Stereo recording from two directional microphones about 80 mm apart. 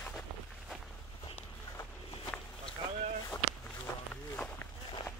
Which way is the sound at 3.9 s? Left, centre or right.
Left.